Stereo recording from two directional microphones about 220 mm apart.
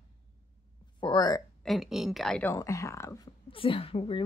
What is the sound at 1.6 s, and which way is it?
A woman's voice, centre (ahead or behind).